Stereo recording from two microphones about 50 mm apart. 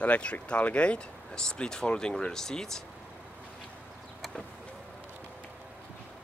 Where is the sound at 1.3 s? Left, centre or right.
Centre.